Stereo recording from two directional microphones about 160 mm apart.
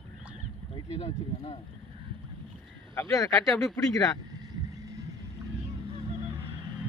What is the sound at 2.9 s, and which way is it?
Speech, 20° left (ahead or behind).